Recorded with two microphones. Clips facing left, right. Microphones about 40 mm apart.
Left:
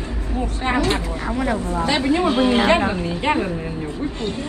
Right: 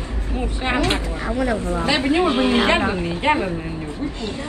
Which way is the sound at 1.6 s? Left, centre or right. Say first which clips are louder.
Even; right.